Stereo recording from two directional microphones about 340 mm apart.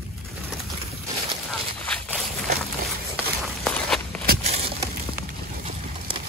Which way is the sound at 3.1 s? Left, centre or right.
Centre.